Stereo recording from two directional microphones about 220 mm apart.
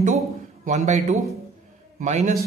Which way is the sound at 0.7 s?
30° right (ahead or behind).